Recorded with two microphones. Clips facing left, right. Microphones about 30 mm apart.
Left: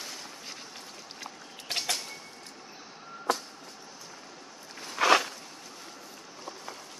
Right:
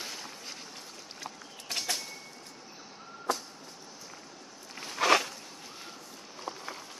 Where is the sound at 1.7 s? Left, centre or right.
Left.